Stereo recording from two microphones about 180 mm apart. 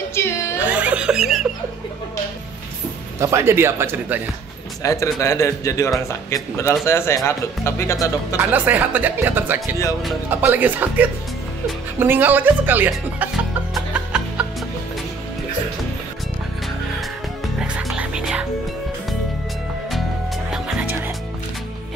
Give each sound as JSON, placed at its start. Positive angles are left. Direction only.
{"t": 0.1, "sound": "music", "side_deg": 15}
{"t": 0.7, "sound": "music", "side_deg": -5}
{"t": 3.2, "sound": "speech", "side_deg": -15}
{"t": 4.8, "sound": "speech", "side_deg": 15}
{"t": 8.4, "sound": "speech", "side_deg": -10}
{"t": 12.0, "sound": "music", "side_deg": -10}
{"t": 17.6, "sound": "music", "side_deg": -5}
{"t": 20.5, "sound": "music", "side_deg": 0}